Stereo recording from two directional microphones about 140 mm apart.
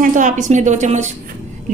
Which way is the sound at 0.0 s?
65° right (ahead or behind).